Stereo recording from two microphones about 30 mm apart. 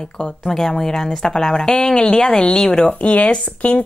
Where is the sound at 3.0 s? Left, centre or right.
Left.